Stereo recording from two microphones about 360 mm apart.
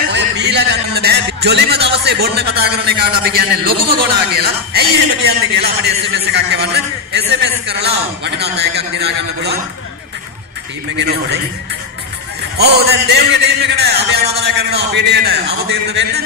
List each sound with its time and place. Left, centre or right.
0.1 s a sound: right
1.9 s a man's voice: right
11.0 s a man's voice: right
12.5 s a man's voice: right